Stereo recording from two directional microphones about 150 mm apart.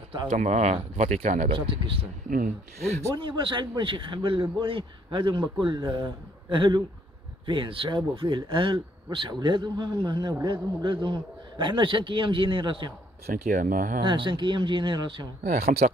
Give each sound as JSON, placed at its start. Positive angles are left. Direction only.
{"t": 0.3, "sound": "speech", "side_deg": -50}
{"t": 1.5, "sound": "speech", "side_deg": -35}
{"t": 2.2, "sound": "speech", "side_deg": -65}
{"t": 3.2, "sound": "speech", "side_deg": -35}
{"t": 13.3, "sound": "speech", "side_deg": -60}
{"t": 14.0, "sound": "speech", "side_deg": -35}
{"t": 15.4, "sound": "speech", "side_deg": -80}